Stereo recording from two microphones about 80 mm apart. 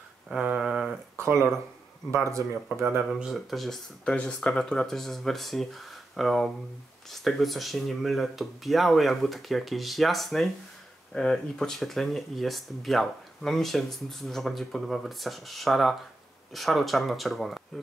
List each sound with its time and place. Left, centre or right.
0.3 s a sound: centre
1.1 s speech: right
3.2 s speech: centre